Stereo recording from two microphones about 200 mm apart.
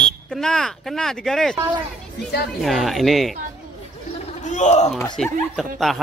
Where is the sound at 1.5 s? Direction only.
20° right (ahead or behind).